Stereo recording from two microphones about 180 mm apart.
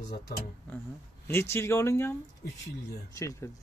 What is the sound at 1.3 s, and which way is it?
A man's voice, 15° left (ahead or behind).